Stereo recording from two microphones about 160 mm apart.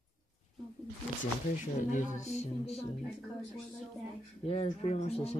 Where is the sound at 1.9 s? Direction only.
50° left (ahead or behind).